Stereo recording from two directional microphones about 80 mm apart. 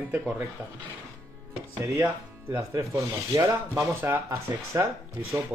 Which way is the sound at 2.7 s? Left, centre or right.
Right.